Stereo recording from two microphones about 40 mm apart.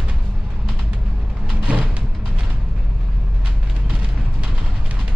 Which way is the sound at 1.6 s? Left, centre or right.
Right.